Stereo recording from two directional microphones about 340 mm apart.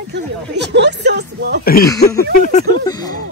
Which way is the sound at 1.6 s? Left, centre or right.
Left.